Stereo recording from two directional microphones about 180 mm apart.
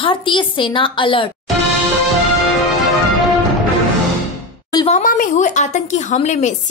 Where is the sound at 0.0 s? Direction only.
30° left (ahead or behind).